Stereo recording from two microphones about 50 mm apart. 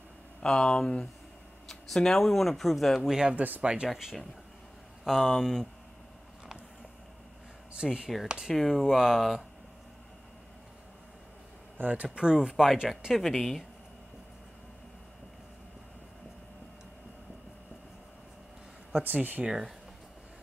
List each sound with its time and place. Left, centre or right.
0.4 s speech: centre
3.1 s speech: centre
3.3 s speech: right
3.6 s speech: right
3.9 s speech: centre
7.7 s speech: centre
8.5 s speech: centre
11.8 s speech: right
12.2 s speech: centre
13.2 s speech: centre
19.0 s speech: right
19.4 s speech: centre